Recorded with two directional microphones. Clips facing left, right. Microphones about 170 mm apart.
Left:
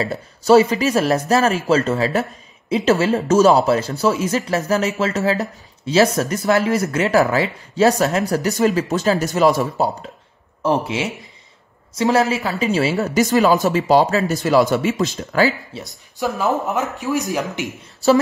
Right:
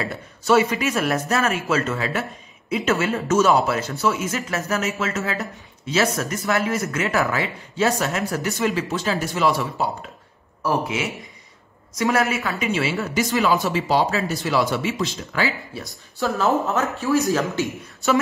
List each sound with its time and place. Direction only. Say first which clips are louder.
0.0 s speech: left 5 dB; 35° left (ahead or behind)
10.6 s speech: left 3 dB; 25° left (ahead or behind); by 15.5 s 45° left (ahead or behind)
15.7 s speech: left 1 dB; 20° left (ahead or behind)